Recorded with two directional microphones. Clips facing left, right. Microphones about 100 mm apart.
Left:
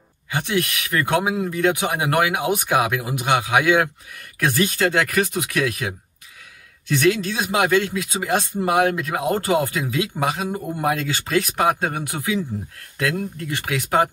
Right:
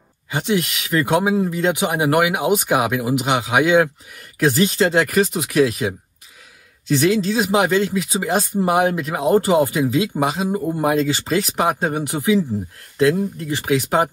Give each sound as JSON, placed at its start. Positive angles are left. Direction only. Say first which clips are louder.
{"t": 0.3, "sound": "speech", "louder": "right 2 dB", "side_deg": -20}